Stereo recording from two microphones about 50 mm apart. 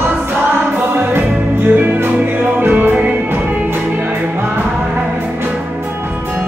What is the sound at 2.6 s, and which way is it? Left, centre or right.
Music, right.